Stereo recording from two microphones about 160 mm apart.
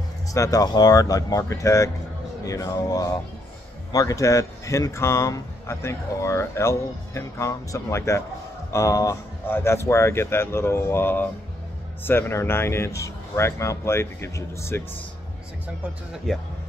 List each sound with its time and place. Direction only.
0.3 s speech: 20° left (ahead or behind)
16.3 s speech: centre (ahead or behind)